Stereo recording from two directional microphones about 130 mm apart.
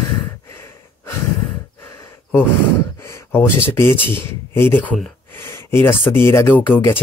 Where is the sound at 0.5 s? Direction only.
20° left (ahead or behind).